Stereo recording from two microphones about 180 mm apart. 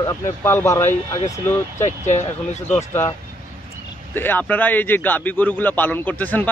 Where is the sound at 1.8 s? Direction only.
40° left (ahead or behind).